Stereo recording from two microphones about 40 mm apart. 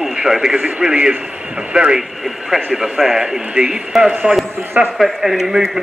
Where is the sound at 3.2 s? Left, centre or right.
Centre.